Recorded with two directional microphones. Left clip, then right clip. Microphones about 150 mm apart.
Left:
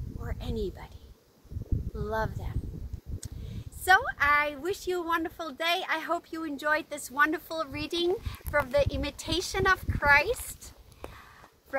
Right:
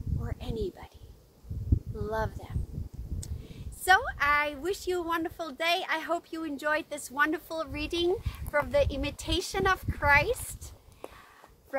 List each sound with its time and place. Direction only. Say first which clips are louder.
0.2 s a sound: left 1 dB; centre (ahead or behind)
2.0 s speech: left 1 dB; centre (ahead or behind)
3.8 s speech: left 1 dB; 5° right (ahead or behind)